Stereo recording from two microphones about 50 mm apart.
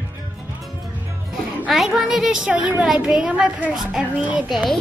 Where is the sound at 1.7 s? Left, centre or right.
Centre.